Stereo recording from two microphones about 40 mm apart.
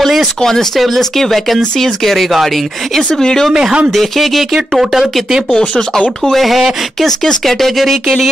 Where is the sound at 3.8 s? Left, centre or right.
Centre.